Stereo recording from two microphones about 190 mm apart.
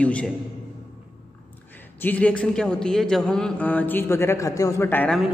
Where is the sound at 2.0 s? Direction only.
5° left (ahead or behind).